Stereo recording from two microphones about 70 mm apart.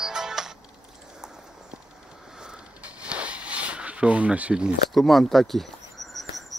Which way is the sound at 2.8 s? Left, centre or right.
Centre.